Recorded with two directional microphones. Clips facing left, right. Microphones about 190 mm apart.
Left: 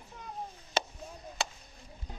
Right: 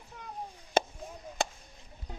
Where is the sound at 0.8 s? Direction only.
50° right (ahead or behind).